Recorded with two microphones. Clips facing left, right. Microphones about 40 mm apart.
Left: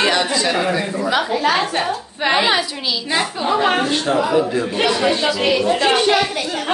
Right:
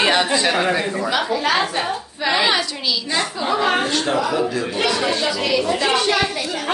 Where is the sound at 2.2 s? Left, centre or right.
Left.